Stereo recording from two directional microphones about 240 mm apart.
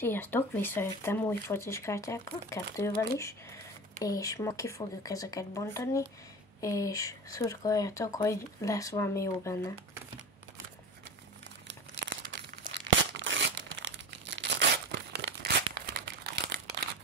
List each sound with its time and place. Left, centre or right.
0.0 s speech: centre
11.6 s crumpling: right
12.7 s tearing: right